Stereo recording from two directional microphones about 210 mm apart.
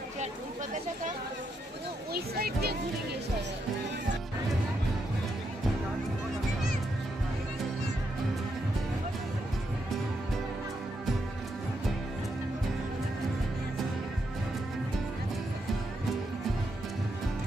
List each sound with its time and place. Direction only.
2.1 s speech: 45° right (ahead or behind)